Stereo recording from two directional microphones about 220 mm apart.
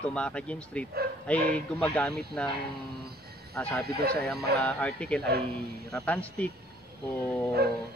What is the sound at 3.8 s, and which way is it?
Speech, 45° right (ahead or behind).